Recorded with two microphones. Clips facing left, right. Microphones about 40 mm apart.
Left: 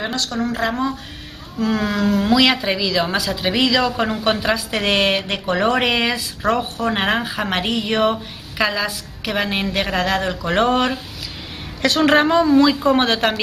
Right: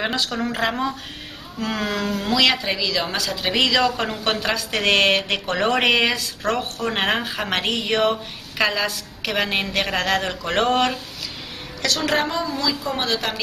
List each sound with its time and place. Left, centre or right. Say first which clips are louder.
0.1 s a woman's voice: left 2 dB; centre
11.8 s a woman's voice: left 7 dB; left